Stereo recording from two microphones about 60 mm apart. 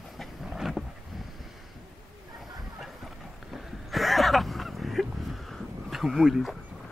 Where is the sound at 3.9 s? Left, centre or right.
Centre.